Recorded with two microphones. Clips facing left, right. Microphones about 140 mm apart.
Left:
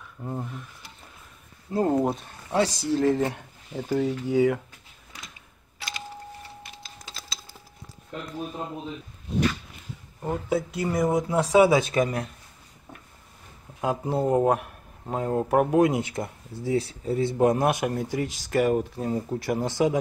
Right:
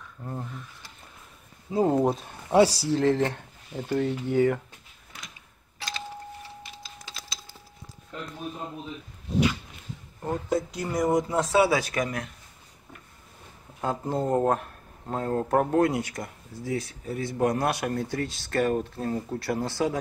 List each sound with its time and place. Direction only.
0.2 s speech: 10° left (ahead or behind)
1.7 s speech: centre (ahead or behind)
2.2 s speech: 10° right (ahead or behind)
2.8 s speech: 5° left (ahead or behind)
10.2 s speech: 5° left (ahead or behind)
11.5 s speech: 20° left (ahead or behind)
13.7 s speech: 10° left (ahead or behind)